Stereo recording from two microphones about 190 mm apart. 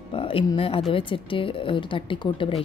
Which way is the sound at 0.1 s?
30° left (ahead or behind).